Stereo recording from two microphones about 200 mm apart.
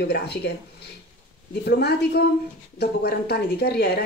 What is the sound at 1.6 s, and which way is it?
Speech, 55° left (ahead or behind).